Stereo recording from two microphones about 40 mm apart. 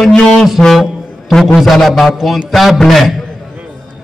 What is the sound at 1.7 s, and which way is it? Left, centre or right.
A man's voice, centre.